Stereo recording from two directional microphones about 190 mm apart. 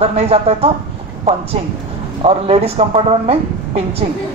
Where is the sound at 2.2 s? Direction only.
30° right (ahead or behind).